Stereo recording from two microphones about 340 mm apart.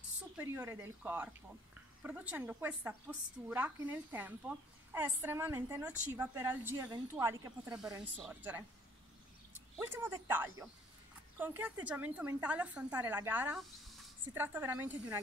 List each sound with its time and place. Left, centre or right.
0.4 s a woman's voice: centre
9.9 s a woman's voice: centre